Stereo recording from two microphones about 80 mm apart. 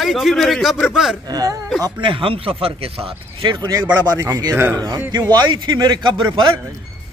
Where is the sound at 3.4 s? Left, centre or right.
Right.